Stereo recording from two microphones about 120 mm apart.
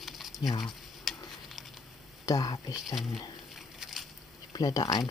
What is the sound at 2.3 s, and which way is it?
Speech, 30° left (ahead or behind).